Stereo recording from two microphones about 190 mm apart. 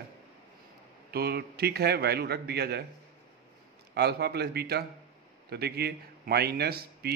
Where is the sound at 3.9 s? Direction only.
60° right (ahead or behind).